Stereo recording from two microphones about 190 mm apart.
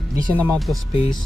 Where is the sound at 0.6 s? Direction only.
Centre (ahead or behind).